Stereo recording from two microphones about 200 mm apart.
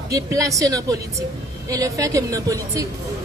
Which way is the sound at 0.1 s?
15° right (ahead or behind).